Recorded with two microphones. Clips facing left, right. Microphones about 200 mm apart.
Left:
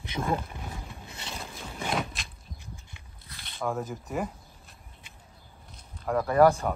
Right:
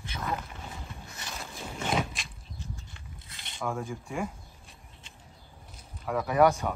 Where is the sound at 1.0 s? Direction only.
25° left (ahead or behind).